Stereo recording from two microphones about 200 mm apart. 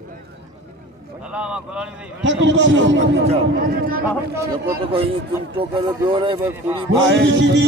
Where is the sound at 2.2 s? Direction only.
65° right (ahead or behind).